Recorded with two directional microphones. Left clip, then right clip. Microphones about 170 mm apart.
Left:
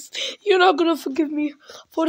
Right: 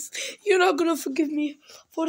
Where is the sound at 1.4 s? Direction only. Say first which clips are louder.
Left 4 dB; 20° left (ahead or behind).